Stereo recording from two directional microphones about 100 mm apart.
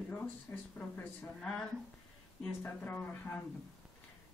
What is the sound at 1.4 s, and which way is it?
Male singing, 5° left (ahead or behind).